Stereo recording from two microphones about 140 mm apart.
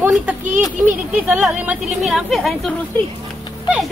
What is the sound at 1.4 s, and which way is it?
Speech, centre (ahead or behind).